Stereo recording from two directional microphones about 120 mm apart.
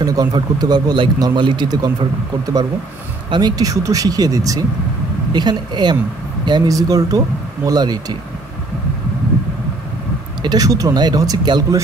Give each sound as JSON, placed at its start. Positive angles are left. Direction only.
{"t": 0.0, "sound": "speech", "side_deg": -30}
{"t": 3.3, "sound": "speech", "side_deg": -35}
{"t": 10.4, "sound": "speech", "side_deg": -35}